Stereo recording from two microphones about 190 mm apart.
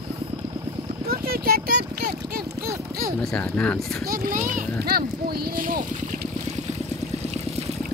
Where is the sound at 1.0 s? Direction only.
55° right (ahead or behind).